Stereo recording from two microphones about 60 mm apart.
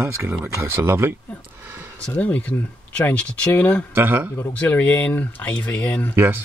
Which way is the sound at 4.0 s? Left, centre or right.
Right.